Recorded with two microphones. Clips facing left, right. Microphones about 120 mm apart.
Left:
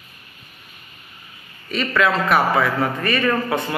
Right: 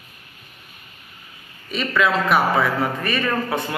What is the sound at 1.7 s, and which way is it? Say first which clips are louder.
A man's voice: left 1 dB; 15° right (ahead or behind).